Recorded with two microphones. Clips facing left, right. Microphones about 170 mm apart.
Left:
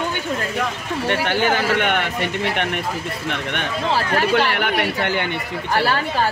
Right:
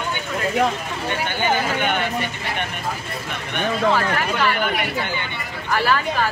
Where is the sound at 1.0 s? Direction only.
80° left.